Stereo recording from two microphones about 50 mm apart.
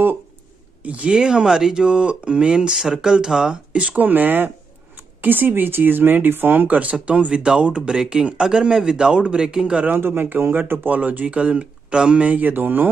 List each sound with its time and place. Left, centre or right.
0.8 s speech: right
1.1 s speech: centre
2.7 s speech: centre; by 4.0 s right
4.0 s speech: right
9.9 s a man's voice: right